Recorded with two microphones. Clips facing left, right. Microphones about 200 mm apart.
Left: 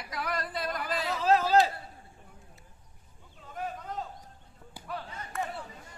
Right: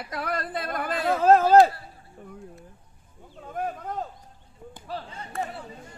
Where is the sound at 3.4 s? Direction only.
50° right (ahead or behind).